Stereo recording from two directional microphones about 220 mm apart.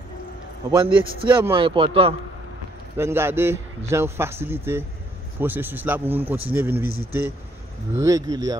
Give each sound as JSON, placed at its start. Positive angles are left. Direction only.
{"t": 0.7, "sound": "a man's voice", "side_deg": -20}
{"t": 3.0, "sound": "speech", "side_deg": -10}